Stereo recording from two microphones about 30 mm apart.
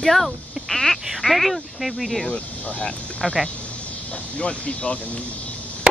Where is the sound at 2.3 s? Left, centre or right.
Left.